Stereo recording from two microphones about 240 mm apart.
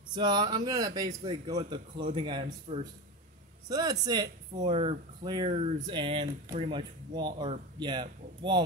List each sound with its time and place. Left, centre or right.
0.1 s a man's voice: centre